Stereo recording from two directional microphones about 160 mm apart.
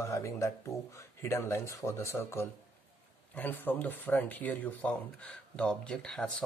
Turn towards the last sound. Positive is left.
turn(degrees=5)  # may be behind; listen again after turning